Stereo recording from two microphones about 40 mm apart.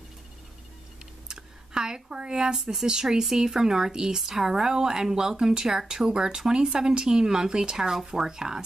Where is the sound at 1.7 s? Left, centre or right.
Centre.